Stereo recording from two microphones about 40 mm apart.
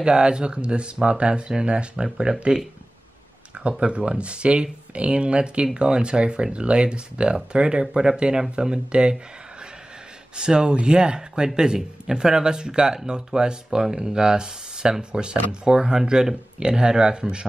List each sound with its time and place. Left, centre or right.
0.0 s speech: right
3.7 s speech: right
7.8 s speech: centre
10.3 s speech: right